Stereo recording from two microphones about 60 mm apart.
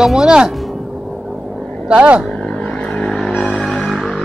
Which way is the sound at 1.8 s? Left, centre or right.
Centre.